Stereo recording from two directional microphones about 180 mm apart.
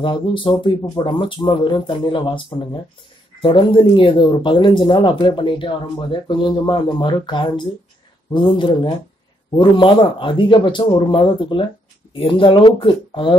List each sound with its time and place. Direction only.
0.0 s speech: 30° left (ahead or behind)